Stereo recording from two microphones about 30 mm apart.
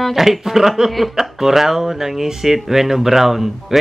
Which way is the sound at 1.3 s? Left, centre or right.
Centre.